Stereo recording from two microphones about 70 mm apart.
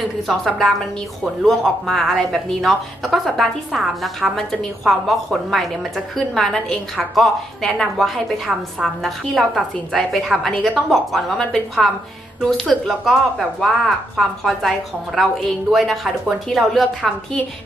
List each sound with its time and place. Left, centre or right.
0.4 s a woman's voice: centre